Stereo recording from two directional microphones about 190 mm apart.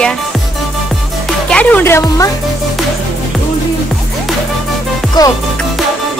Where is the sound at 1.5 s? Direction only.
5° left (ahead or behind).